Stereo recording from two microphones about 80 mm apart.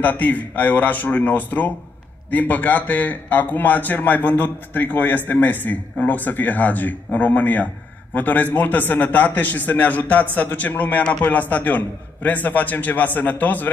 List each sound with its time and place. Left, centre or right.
0.0 s a man's voice: left